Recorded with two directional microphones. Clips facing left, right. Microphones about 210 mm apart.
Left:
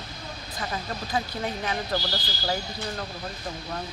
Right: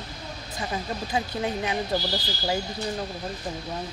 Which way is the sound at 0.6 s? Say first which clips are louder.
Right 2 dB; 15° right (ahead or behind).